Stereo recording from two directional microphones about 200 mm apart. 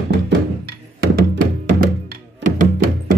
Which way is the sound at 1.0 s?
50° right (ahead or behind).